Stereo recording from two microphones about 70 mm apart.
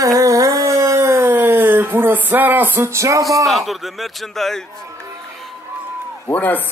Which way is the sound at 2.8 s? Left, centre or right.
Right.